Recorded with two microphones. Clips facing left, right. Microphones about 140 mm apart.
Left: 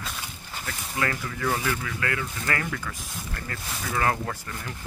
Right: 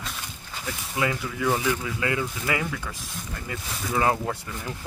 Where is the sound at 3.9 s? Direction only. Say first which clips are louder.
Right 3 dB; 20° right (ahead or behind).